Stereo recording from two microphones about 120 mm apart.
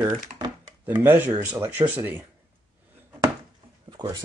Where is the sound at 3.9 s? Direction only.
35° right (ahead or behind).